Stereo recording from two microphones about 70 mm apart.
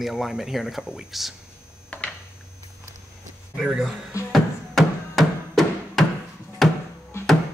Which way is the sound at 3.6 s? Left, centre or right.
Centre.